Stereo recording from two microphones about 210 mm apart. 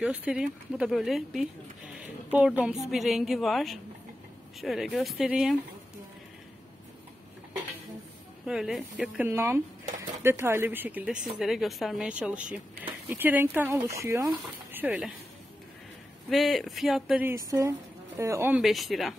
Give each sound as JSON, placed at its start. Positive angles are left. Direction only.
{"t": 0.0, "sound": "speech", "side_deg": -5}
{"t": 8.5, "sound": "speech", "side_deg": -5}
{"t": 16.3, "sound": "speech", "side_deg": 0}